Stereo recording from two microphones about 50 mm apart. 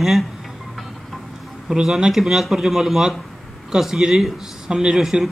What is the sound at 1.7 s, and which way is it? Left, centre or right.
A man's voice, centre.